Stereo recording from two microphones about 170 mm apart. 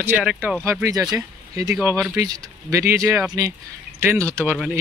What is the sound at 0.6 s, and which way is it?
Speech, 15° right (ahead or behind).